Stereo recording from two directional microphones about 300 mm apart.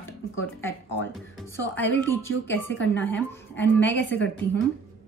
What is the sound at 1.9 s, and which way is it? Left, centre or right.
A woman's voice, centre.